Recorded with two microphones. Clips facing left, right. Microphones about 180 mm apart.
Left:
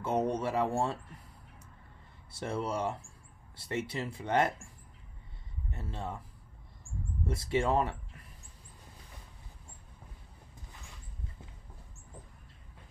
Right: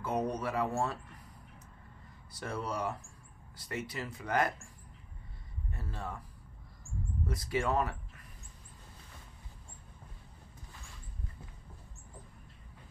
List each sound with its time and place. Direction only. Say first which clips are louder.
0.0 s speech: left 3 dB; 25° left (ahead or behind)
2.3 s speech: left 3 dB; 25° left (ahead or behind)
5.7 s speech: left 2 dB; 25° left (ahead or behind)
7.2 s speech: left 3 dB; 25° left (ahead or behind)